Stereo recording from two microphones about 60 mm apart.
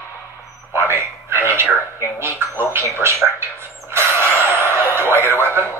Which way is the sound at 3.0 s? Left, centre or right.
Right.